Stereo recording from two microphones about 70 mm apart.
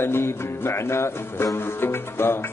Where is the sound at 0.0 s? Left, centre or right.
Left.